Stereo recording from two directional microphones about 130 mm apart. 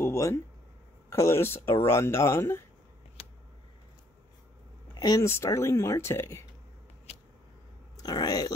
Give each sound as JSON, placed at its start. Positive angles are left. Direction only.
{"t": 0.0, "sound": "a sound", "side_deg": 20}
{"t": 1.1, "sound": "speech", "side_deg": 20}
{"t": 4.9, "sound": "speech", "side_deg": 30}
{"t": 8.0, "sound": "speech", "side_deg": 30}